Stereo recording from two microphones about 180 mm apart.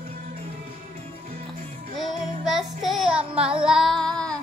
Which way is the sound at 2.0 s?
Centre (ahead or behind).